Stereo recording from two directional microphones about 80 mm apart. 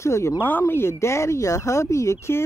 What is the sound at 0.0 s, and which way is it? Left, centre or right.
Speech, left.